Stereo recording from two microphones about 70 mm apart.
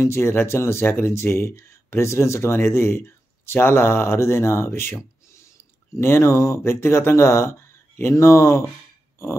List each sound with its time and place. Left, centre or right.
0.0 s speech: left
5.9 s speech: left